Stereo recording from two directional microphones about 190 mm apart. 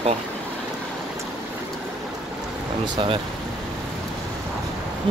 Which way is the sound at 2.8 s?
25° right (ahead or behind).